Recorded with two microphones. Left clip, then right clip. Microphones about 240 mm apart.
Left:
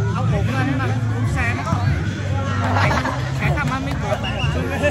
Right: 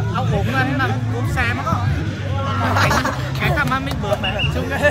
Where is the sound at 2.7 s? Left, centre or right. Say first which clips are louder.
Right 2 dB; right.